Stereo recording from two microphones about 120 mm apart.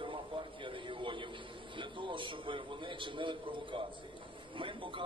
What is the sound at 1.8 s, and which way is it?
A man's voice, 45° right (ahead or behind).